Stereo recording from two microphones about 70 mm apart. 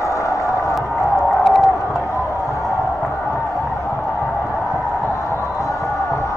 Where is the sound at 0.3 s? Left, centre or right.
Left.